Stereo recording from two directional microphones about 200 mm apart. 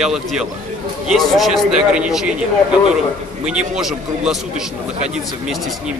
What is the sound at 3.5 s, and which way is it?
Speech, 5° right (ahead or behind).